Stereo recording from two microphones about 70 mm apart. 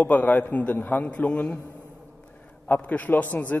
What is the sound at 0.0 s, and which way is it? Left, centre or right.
A man's voice, left.